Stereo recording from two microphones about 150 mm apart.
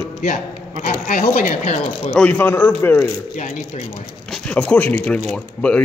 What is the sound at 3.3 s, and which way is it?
Speech, 55° left (ahead or behind).